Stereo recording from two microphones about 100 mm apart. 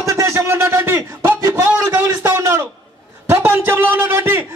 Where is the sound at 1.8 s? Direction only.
35° right (ahead or behind).